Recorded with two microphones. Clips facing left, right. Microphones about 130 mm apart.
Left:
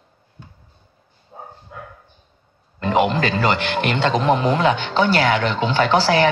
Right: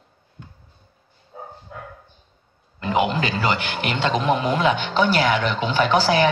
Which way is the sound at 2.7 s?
30° left (ahead or behind).